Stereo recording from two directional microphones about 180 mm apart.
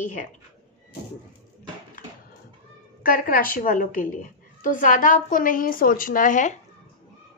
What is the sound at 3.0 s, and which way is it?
A woman's voice, 50° left (ahead or behind).